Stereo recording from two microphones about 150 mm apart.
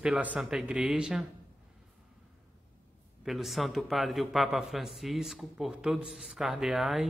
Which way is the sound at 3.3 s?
Centre (ahead or behind).